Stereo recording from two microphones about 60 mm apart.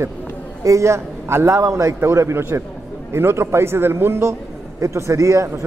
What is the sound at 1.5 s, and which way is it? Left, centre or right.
Speech, right.